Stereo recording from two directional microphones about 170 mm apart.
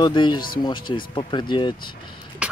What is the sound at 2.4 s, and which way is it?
Beatboxing, 5° right (ahead or behind).